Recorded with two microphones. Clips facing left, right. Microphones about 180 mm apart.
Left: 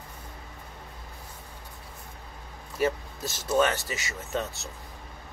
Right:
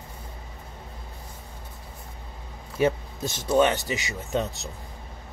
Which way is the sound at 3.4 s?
15° right (ahead or behind).